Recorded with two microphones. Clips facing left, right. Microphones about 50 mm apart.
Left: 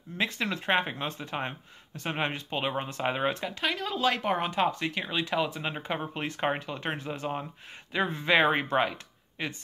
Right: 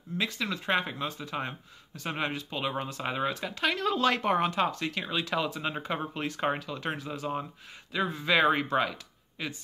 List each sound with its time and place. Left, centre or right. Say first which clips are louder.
0.2 s speech: left 2 dB; left
3.4 s speech: right 2 dB; centre
4.6 s speech: left 1 dB; centre
7.9 s speech: left 2 dB; left